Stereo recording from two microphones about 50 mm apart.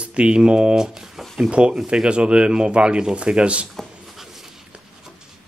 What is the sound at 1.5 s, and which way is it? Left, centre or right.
Speech, centre.